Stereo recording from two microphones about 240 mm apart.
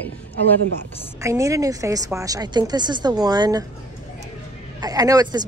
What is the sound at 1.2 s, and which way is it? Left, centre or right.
A woman's voice, centre.